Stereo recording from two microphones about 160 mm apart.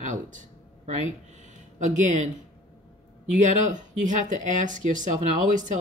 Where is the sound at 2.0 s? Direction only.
50° right (ahead or behind).